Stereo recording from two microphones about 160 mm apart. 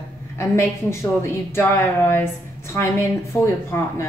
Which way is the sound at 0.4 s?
15° left (ahead or behind).